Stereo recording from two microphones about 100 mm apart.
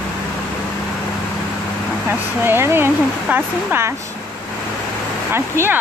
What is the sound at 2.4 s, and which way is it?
Speech, 25° right (ahead or behind).